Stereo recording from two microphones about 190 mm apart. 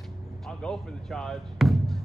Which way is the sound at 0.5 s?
5° left (ahead or behind).